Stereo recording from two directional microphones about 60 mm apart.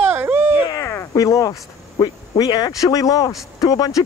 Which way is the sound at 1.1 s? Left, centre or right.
Left.